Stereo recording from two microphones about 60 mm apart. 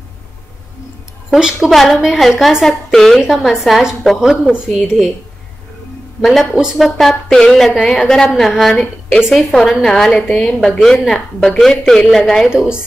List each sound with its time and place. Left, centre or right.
1.3 s a woman's voice: centre
4.2 s a woman's voice: centre
6.2 s a woman's voice: centre
12.5 s a woman's voice: centre